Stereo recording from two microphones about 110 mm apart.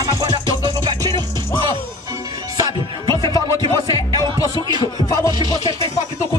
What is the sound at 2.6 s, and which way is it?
Music, 45° right (ahead or behind).